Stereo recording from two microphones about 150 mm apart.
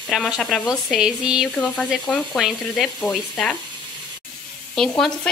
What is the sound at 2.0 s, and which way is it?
Speech, 10° left (ahead or behind).